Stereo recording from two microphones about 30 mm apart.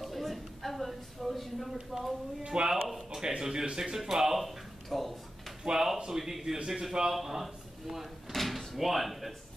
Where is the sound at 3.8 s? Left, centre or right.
Centre.